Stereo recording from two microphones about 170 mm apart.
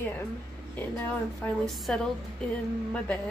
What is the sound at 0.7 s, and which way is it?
A woman's voice, 10° left (ahead or behind).